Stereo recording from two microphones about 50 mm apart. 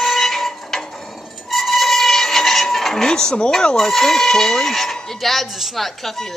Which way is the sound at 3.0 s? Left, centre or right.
Centre.